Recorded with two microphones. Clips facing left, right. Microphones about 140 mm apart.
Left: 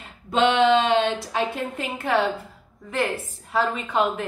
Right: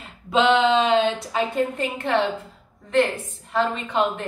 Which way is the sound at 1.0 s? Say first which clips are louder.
Right 1 dB; centre (ahead or behind).